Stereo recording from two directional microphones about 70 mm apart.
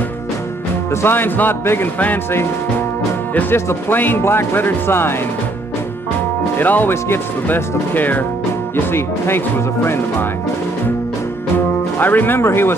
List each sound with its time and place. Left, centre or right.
1.0 s speech: left
3.3 s speech: left
6.6 s speech: left
12.0 s speech: left